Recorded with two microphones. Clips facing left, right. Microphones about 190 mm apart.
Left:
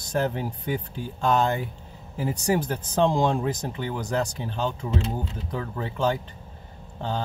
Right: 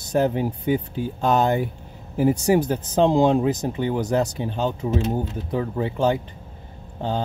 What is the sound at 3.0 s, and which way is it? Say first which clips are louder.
Speech: right 6 dB; 20° right (ahead or behind).